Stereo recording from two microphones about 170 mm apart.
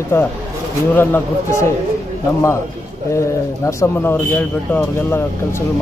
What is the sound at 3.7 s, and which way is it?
A man's voice, 15° left (ahead or behind).